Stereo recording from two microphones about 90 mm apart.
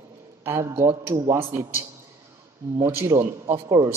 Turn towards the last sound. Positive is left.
turn(degrees=-40)  # may be behind; listen again after turning